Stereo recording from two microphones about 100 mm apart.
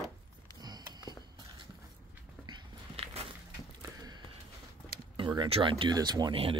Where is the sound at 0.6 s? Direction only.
45° right (ahead or behind).